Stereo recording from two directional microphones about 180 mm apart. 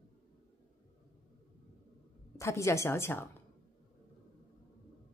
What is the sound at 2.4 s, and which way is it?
Speech, 15° left (ahead or behind).